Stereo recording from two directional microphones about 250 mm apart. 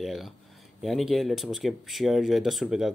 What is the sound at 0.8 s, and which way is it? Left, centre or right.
Speech, centre.